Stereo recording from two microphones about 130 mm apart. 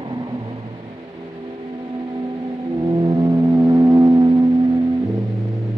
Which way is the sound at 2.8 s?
35° right (ahead or behind).